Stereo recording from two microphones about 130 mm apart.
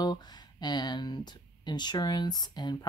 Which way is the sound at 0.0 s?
35° left (ahead or behind).